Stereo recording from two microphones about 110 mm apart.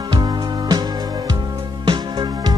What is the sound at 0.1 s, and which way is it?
Music, 35° right (ahead or behind).